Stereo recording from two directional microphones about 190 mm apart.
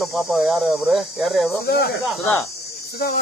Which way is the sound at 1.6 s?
60° left (ahead or behind).